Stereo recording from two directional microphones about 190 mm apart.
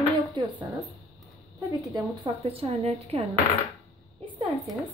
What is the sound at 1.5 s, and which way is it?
Speech, 15° right (ahead or behind).